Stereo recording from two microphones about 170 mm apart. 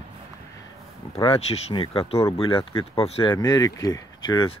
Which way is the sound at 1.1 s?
30° left (ahead or behind).